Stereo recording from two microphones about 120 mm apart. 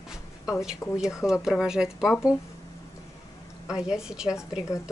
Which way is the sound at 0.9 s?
5° right (ahead or behind).